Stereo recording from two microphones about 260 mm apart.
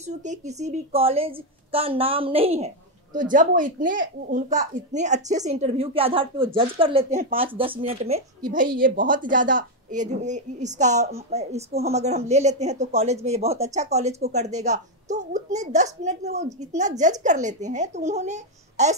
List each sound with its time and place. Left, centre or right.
0.0 s a woman's voice: right